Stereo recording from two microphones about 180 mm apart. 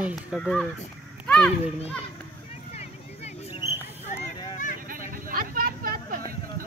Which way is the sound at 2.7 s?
35° left (ahead or behind).